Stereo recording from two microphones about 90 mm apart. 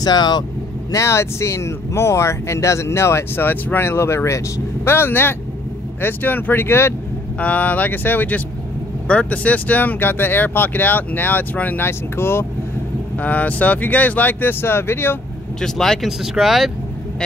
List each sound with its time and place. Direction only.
0.0 s speech: 50° left (ahead or behind)
0.9 s speech: 30° left (ahead or behind)
7.3 s speech: 15° left (ahead or behind)
15.6 s speech: 5° left (ahead or behind)